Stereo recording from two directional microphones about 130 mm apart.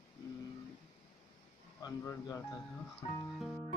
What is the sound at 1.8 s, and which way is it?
Speech, 30° left (ahead or behind).